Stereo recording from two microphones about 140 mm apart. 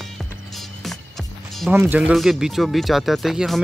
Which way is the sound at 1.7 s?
15° right (ahead or behind).